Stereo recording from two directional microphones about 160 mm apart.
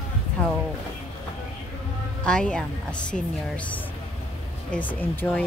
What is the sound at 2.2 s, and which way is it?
A woman's voice, 5° left (ahead or behind).